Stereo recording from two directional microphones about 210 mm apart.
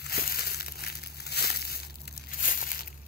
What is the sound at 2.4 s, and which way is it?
Crumpling, 40° left (ahead or behind).